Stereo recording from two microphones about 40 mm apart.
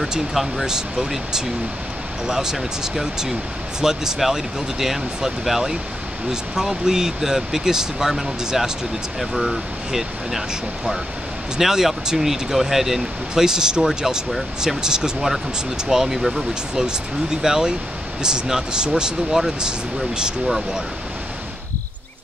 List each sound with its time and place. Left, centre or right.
0.3 s speech: centre
11.5 s speech: centre